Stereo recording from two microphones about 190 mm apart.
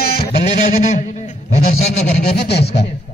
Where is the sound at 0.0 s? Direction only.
55° left (ahead or behind).